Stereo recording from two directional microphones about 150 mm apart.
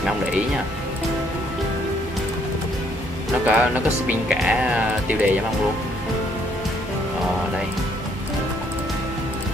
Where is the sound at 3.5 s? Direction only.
10° right (ahead or behind).